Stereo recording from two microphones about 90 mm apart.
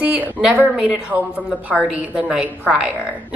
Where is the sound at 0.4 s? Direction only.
10° right (ahead or behind).